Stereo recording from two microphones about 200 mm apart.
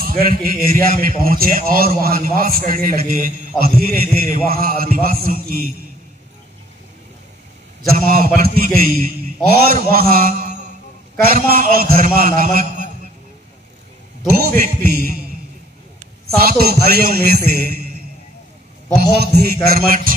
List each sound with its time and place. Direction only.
0.0 s a man's voice: 45° right (ahead or behind)
7.9 s a man's voice: 45° right (ahead or behind)
14.3 s a man's voice: 50° right (ahead or behind)
16.3 s a man's voice: 50° right (ahead or behind)
19.1 s a man's voice: 50° right (ahead or behind)